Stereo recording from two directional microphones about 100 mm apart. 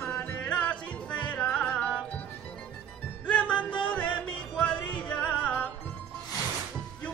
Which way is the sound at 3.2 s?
15° left (ahead or behind).